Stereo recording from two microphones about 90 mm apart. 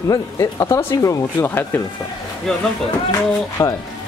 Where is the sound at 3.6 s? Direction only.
35° left (ahead or behind).